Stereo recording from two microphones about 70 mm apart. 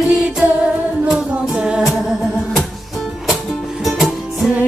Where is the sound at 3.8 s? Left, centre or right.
Centre.